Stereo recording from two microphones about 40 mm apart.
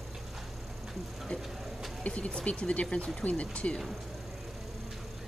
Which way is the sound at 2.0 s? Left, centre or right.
Left.